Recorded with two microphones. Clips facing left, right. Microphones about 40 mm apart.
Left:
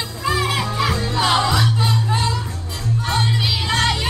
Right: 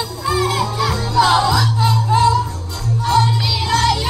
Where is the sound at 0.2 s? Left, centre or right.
Left.